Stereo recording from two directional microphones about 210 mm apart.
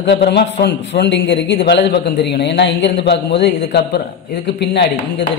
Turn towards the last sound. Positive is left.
turn(degrees=55)  # may be behind; listen again after turning